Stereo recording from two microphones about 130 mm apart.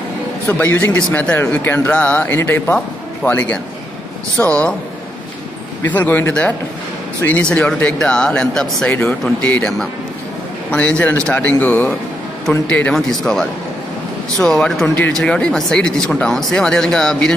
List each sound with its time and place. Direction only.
0.5 s speech: 10° left (ahead or behind)
5.9 s speech: 15° left (ahead or behind)